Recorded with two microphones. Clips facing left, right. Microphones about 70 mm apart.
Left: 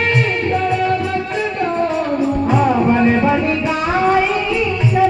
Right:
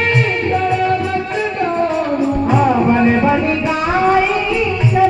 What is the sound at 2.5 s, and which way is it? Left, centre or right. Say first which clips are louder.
Music: right 1 dB; right.